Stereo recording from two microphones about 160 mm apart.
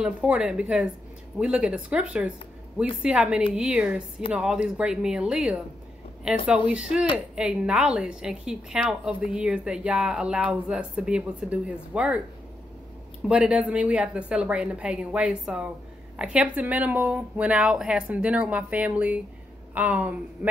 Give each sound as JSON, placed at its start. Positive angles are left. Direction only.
{"t": 0.0, "sound": "a woman's voice", "side_deg": -5}
{"t": 13.3, "sound": "a woman's voice", "side_deg": -5}